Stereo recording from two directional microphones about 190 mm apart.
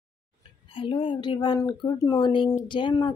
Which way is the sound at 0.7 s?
25° left (ahead or behind).